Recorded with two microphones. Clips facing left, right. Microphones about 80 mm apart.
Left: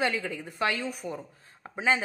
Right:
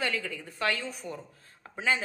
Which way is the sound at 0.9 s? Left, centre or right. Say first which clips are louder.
Left 3 dB; centre.